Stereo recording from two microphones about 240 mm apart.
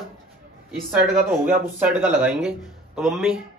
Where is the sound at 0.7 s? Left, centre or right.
Centre.